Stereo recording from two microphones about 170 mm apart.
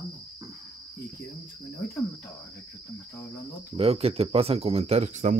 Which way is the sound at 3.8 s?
35° right (ahead or behind).